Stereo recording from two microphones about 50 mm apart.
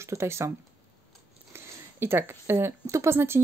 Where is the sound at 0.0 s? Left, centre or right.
Right.